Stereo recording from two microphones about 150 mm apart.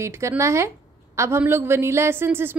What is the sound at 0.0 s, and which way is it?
A woman's voice, 20° right (ahead or behind).